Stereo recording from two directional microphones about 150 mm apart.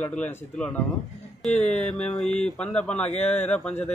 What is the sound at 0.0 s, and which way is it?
Speech, 10° left (ahead or behind).